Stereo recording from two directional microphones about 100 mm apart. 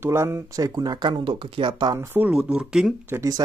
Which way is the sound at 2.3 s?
10° right (ahead or behind).